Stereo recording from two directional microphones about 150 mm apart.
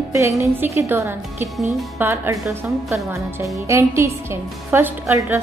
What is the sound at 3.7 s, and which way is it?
A woman's voice, 20° right (ahead or behind).